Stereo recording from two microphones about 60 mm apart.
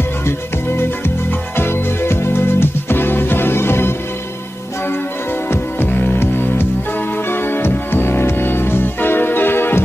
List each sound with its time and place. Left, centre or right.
0.7 s music: left
5.5 s music: left